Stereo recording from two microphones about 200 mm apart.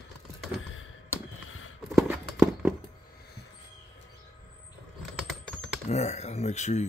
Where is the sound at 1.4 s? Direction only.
80° left.